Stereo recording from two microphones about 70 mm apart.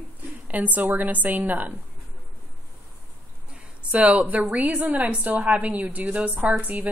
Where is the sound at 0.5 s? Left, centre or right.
Right.